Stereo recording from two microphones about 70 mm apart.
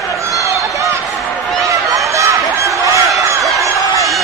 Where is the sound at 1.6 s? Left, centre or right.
Right.